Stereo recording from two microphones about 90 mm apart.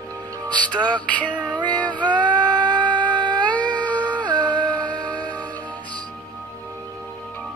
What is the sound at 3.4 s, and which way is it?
Cat, 15° left (ahead or behind).